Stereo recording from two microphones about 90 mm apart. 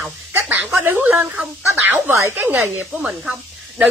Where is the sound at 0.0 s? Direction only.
20° right (ahead or behind).